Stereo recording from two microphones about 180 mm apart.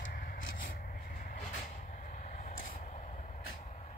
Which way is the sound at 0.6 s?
50° left (ahead or behind).